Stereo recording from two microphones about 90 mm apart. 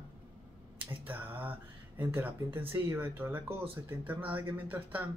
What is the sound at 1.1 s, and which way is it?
Speech, 20° right (ahead or behind).